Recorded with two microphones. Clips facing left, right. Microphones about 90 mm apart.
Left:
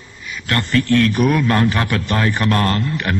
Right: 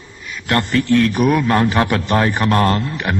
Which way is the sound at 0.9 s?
10° right (ahead or behind).